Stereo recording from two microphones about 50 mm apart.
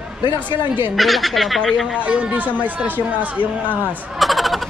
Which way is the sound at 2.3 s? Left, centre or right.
Right.